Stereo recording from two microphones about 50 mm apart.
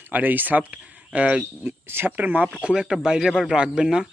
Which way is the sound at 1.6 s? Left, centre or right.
Right.